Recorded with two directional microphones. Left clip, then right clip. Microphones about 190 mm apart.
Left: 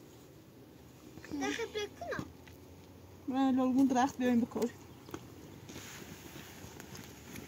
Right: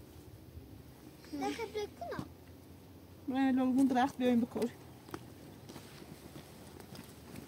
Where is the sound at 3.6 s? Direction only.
5° left (ahead or behind).